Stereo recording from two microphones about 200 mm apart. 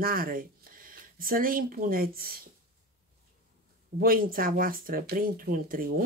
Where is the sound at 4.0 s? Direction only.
45° right (ahead or behind).